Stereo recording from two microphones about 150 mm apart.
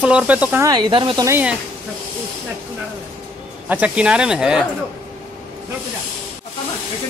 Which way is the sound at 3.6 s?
10° right (ahead or behind).